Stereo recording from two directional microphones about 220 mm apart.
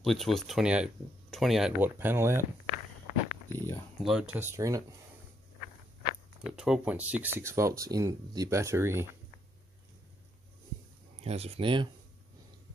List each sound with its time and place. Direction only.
0.0 s speech: centre (ahead or behind)
3.5 s a sound: 10° left (ahead or behind)
4.0 s speech: 5° right (ahead or behind)
6.4 s speech: 5° right (ahead or behind)
11.1 s speech: 30° right (ahead or behind)